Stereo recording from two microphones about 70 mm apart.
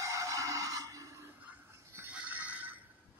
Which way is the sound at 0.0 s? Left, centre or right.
Right.